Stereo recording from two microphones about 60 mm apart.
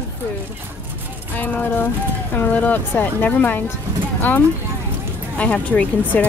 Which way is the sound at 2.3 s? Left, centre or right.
Left.